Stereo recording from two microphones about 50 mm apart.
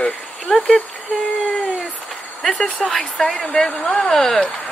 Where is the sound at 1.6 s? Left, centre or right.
Centre.